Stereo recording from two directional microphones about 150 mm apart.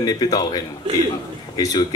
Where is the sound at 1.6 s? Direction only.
25° left (ahead or behind).